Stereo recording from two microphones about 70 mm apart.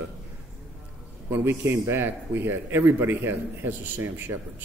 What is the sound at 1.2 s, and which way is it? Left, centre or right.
A man's voice, right.